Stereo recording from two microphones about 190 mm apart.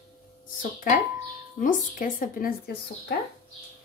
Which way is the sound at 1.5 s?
45° left (ahead or behind).